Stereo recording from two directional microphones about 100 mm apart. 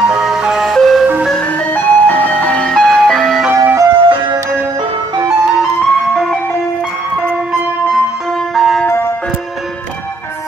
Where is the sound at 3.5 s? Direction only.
30° right (ahead or behind).